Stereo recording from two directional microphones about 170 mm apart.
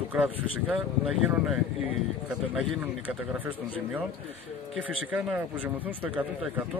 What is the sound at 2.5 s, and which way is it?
Speech, 10° right (ahead or behind).